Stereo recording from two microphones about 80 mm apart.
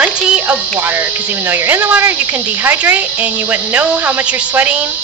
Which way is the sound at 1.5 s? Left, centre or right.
Right.